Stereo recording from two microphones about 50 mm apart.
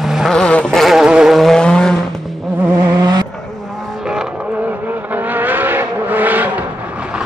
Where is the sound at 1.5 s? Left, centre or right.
Centre.